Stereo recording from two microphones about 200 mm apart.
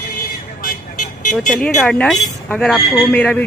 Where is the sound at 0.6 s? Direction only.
40° left (ahead or behind).